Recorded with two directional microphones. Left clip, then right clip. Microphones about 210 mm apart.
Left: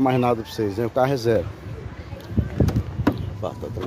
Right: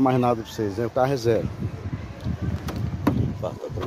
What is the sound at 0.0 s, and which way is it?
Speech, 5° left (ahead or behind).